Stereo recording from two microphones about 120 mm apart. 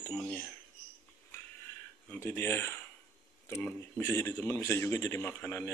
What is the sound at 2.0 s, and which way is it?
A man's voice, 20° left (ahead or behind).